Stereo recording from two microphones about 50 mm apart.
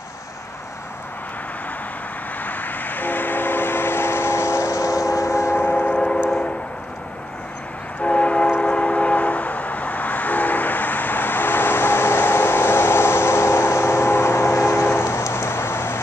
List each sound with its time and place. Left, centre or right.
2.4 s train: left
5.9 s civil defense siren: centre
8.0 s train: left